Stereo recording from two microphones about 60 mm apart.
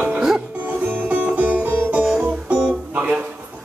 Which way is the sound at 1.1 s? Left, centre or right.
Right.